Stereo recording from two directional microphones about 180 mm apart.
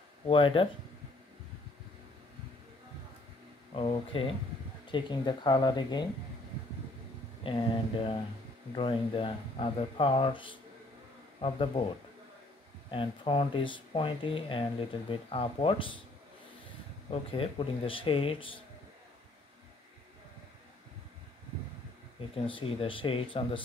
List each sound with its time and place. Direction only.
0.3 s speech: 30° left (ahead or behind)
3.7 s speech: 30° left (ahead or behind)
7.4 s speech: 30° left (ahead or behind)
12.9 s speech: 30° left (ahead or behind)
17.1 s speech: 30° left (ahead or behind)
22.5 s speech: 30° left (ahead or behind)